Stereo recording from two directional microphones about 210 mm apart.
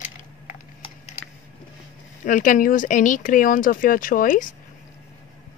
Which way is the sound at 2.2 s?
40° left (ahead or behind).